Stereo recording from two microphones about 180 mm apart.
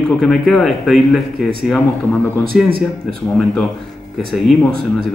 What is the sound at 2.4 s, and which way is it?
Speech, 55° right (ahead or behind).